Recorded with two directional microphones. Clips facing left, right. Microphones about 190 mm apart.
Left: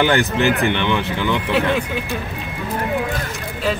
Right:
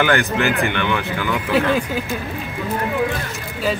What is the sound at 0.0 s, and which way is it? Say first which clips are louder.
Speech: left 1 dB; 20° left (ahead or behind).